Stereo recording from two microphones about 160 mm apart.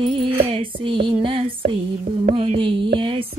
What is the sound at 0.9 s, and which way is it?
Music, 30° right (ahead or behind).